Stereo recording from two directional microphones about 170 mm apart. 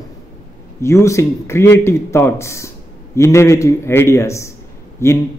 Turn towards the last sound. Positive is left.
turn(degrees=15)  # may be behind; listen again after turning